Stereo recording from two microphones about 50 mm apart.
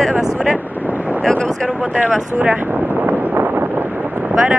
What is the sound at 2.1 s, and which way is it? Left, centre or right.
Speech, centre.